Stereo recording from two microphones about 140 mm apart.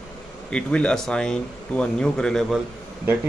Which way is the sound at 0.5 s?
5° left (ahead or behind).